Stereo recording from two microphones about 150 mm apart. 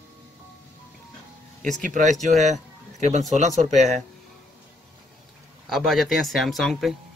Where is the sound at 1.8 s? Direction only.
60° right (ahead or behind).